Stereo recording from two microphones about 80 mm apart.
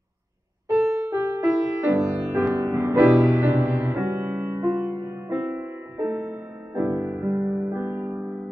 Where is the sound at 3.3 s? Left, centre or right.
Right.